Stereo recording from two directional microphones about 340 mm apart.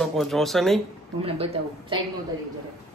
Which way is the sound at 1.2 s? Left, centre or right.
Centre.